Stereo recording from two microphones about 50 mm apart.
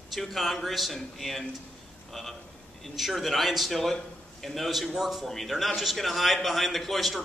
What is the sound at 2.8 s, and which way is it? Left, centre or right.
A man's voice, centre.